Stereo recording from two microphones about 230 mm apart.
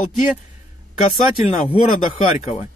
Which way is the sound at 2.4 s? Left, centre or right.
Left.